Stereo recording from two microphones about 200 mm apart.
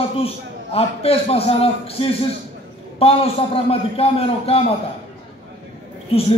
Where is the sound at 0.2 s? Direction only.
30° left (ahead or behind).